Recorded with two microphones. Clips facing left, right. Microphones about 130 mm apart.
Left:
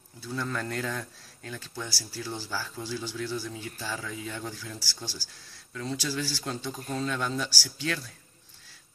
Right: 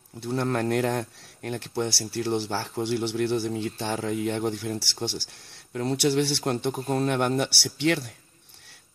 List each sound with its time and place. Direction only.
0.2 s a man's voice: 65° right (ahead or behind)